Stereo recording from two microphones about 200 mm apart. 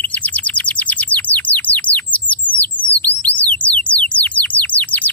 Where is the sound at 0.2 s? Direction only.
5° left (ahead or behind).